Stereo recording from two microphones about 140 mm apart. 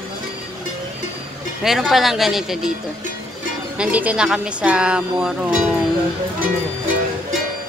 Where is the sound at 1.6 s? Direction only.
Centre (ahead or behind).